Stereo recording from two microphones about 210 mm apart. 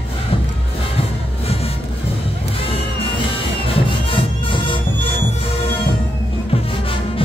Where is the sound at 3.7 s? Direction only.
25° left (ahead or behind).